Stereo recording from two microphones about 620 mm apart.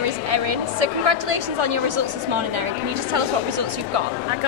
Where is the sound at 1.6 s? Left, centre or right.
Right.